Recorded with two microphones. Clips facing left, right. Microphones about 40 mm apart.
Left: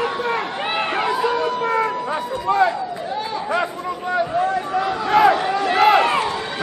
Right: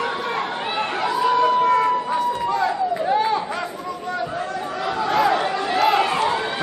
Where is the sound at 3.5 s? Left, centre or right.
Left.